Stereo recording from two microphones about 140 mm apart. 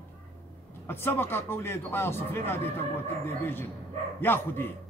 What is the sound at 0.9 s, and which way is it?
Speech, 15° left (ahead or behind).